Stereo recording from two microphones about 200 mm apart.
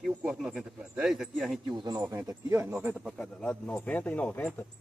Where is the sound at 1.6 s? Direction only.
20° right (ahead or behind).